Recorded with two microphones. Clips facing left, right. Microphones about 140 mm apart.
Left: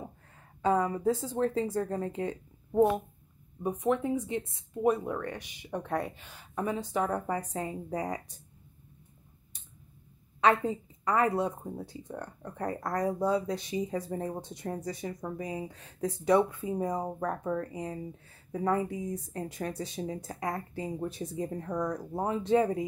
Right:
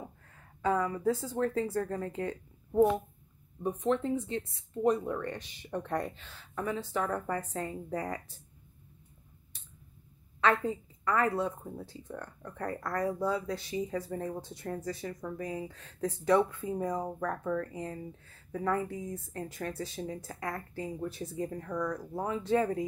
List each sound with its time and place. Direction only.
0.6 s speech: 25° left (ahead or behind)
3.6 s a woman's voice: 15° left (ahead or behind)
4.8 s a woman's voice: 10° left (ahead or behind)
10.4 s a woman's voice: 20° left (ahead or behind)